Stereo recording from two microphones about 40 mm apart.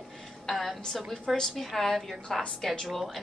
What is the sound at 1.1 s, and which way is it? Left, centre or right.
A woman's voice, centre.